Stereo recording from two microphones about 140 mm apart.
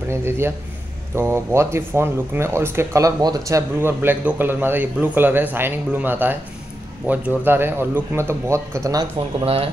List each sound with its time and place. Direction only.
0.1 s speech: 20° right (ahead or behind)
9.4 s speech: 45° right (ahead or behind)